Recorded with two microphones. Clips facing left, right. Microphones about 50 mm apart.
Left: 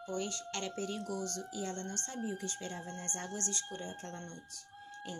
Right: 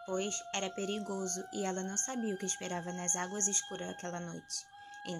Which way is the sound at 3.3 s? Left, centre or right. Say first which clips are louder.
Right 1 dB; right.